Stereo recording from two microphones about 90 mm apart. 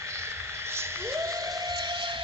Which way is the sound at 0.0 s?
30° right (ahead or behind).